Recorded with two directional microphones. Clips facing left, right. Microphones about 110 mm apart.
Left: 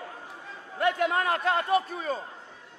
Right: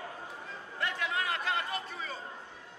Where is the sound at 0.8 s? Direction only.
45° left (ahead or behind).